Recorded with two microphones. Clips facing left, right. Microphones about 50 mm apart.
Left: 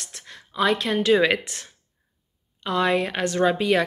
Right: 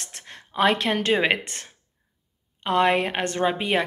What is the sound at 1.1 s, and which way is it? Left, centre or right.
Speech, right.